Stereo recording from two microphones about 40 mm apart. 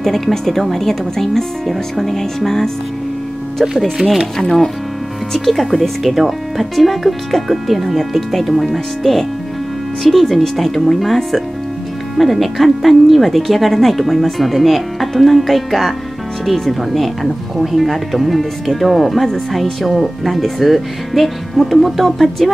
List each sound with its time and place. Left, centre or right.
0.0 s speech: centre
4.0 s speech: centre
4.4 s speech: centre